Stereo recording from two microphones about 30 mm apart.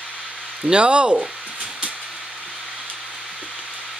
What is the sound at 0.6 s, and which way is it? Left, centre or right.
Speech, right.